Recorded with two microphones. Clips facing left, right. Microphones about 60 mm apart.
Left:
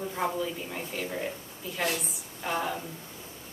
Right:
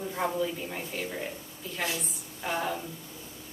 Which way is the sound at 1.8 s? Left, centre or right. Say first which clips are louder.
Left 3 dB; left.